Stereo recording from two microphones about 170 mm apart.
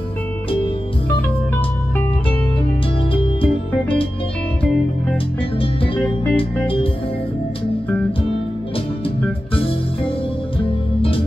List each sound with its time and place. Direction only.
6.3 s music: 30° left (ahead or behind)